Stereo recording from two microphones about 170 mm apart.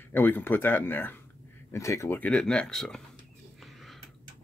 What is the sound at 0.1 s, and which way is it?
Speech, 10° left (ahead or behind).